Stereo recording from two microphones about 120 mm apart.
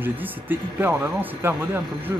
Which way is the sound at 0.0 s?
15° right (ahead or behind).